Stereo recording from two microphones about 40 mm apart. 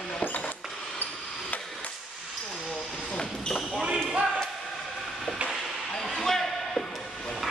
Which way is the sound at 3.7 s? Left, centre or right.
Centre.